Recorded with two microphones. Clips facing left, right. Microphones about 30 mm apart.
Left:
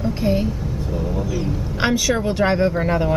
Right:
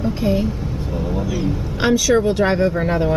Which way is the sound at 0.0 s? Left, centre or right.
Centre.